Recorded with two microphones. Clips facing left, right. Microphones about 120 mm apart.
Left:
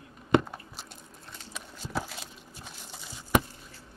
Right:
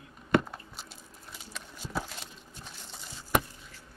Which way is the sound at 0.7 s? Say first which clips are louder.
Left 1 dB; centre (ahead or behind).